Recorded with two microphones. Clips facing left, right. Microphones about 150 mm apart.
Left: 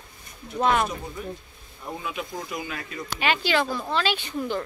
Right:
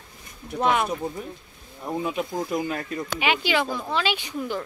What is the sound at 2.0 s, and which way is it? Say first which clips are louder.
Speech: right 7 dB; 35° right (ahead or behind).